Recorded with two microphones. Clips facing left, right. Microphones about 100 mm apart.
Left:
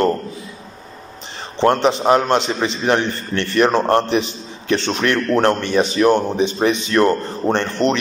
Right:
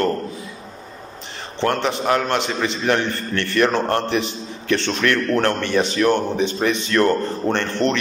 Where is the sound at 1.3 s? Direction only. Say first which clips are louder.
Left 5 dB; 25° left (ahead or behind).